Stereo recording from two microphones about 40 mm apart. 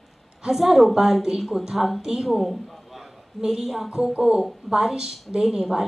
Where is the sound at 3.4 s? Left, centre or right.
Centre.